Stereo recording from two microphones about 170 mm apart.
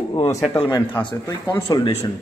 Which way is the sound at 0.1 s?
20° left (ahead or behind).